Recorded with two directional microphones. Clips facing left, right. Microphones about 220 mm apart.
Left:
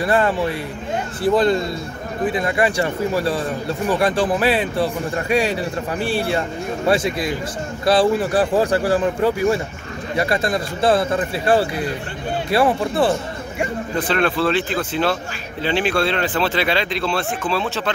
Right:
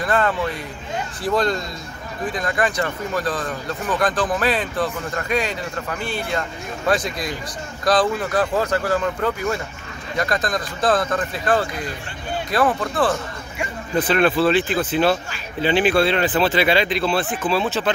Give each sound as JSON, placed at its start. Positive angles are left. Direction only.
{"t": 0.0, "sound": "speech", "side_deg": 30}
{"t": 1.3, "sound": "speech", "side_deg": 5}
{"t": 4.3, "sound": "speech", "side_deg": 5}
{"t": 4.7, "sound": "a man's voice", "side_deg": 30}
{"t": 6.9, "sound": "speech", "side_deg": 5}
{"t": 8.2, "sound": "a man's voice", "side_deg": 30}
{"t": 10.4, "sound": "speech", "side_deg": 10}
{"t": 11.4, "sound": "a man's voice", "side_deg": 30}
{"t": 14.0, "sound": "speech", "side_deg": -5}